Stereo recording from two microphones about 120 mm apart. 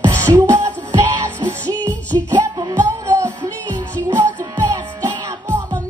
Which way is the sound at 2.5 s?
25° right (ahead or behind).